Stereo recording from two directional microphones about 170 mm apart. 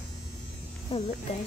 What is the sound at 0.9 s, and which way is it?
Speech, 35° left (ahead or behind).